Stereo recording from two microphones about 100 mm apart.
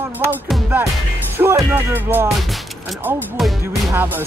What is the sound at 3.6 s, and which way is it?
Speech, 20° right (ahead or behind).